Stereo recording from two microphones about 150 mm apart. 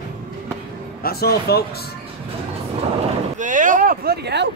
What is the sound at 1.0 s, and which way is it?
Speech, 90° left.